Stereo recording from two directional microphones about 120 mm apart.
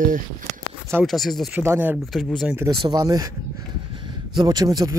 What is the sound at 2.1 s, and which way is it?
Speech, centre (ahead or behind).